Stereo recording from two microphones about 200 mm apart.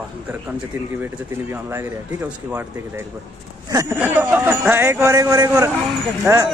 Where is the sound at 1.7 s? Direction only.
10° right (ahead or behind).